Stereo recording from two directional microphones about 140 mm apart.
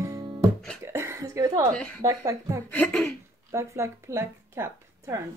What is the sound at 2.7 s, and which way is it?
Speech, 10° left (ahead or behind).